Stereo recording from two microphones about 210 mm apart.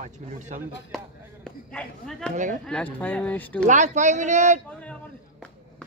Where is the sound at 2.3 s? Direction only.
35° right (ahead or behind).